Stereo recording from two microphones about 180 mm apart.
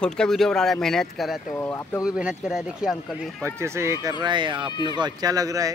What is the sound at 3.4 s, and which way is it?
Speech, 15° right (ahead or behind).